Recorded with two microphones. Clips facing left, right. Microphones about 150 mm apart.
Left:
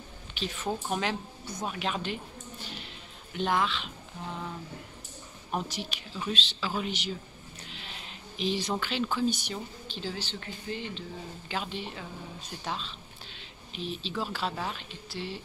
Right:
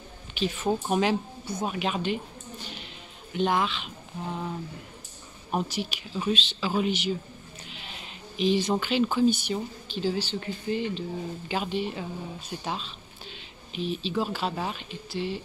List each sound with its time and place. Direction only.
0.7 s speech: 15° right (ahead or behind)
3.3 s speech: 5° right (ahead or behind)
5.5 s speech: 5° right (ahead or behind)
8.4 s speech: centre (ahead or behind)